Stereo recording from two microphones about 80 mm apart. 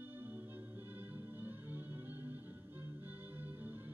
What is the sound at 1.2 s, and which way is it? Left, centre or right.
Music, right.